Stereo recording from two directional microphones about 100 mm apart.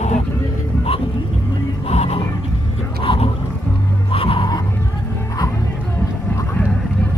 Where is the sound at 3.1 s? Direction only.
55° left (ahead or behind).